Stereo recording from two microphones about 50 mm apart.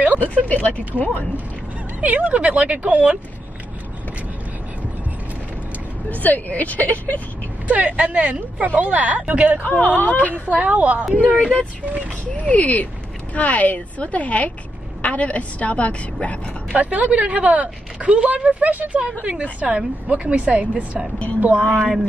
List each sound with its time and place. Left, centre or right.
0.2 s speech: left
2.0 s a woman's voice: right
6.0 s speech: left
7.6 s a woman's voice: right
9.6 s speech: left
10.5 s a woman's voice: right
11.3 s a woman's voice: left
11.8 s a woman's voice: right
12.4 s a woman's voice: left
16.7 s a woman's voice: right